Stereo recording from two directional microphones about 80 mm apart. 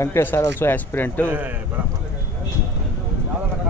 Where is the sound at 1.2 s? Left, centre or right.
Right.